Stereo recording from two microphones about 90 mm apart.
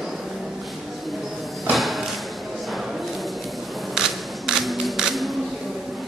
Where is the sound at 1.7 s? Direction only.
Centre (ahead or behind).